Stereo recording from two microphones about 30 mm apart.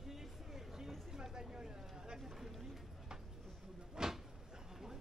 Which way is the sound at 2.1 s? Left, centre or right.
Centre.